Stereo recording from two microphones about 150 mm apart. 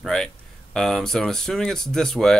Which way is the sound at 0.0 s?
5° left (ahead or behind).